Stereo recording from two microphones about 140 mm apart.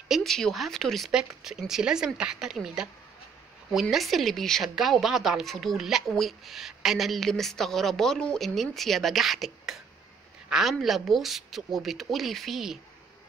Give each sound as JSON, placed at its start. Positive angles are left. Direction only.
{"t": 0.1, "sound": "a woman's voice", "side_deg": 0}
{"t": 3.9, "sound": "a woman's voice", "side_deg": 0}